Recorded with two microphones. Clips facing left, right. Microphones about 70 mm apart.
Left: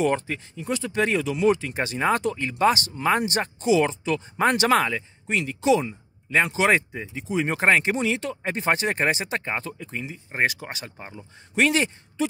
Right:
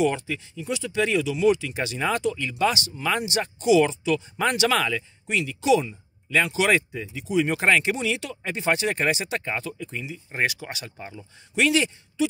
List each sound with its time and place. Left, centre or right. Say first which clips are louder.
0.0 s speech: even; left
11.5 s speech: even; left